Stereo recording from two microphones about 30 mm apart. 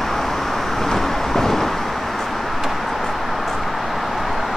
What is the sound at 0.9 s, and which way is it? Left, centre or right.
Vehicle, centre.